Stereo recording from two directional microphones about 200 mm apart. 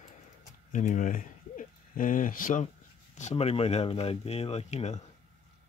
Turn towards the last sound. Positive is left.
turn(degrees=35)  # may be behind; listen again after turning